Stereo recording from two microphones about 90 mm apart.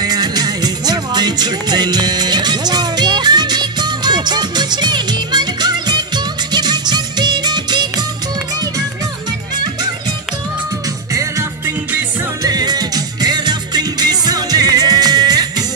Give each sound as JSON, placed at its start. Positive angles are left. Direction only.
{"t": 0.0, "sound": "music", "side_deg": -50}
{"t": 11.1, "sound": "music", "side_deg": -30}
{"t": 12.4, "sound": "music", "side_deg": -45}